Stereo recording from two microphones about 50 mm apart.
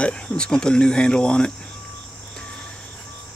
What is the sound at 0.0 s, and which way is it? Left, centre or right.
Speech, centre.